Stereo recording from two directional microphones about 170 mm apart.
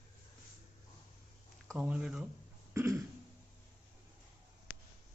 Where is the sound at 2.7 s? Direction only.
15° right (ahead or behind).